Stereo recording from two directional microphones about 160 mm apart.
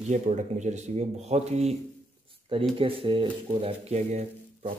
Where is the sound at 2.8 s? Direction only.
35° right (ahead or behind).